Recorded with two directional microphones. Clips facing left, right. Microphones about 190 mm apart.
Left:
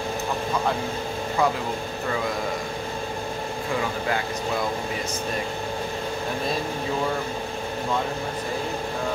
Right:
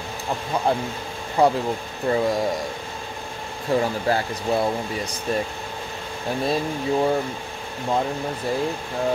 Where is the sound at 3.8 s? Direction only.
35° right (ahead or behind).